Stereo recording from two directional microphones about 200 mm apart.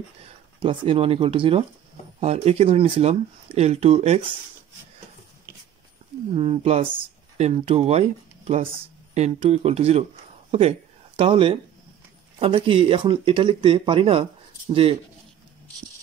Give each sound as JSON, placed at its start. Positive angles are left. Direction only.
{"t": 0.2, "sound": "speech", "side_deg": -25}
{"t": 6.3, "sound": "speech", "side_deg": -30}